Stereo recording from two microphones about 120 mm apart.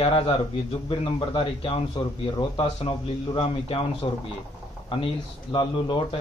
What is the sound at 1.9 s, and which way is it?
A man's voice, 40° left (ahead or behind).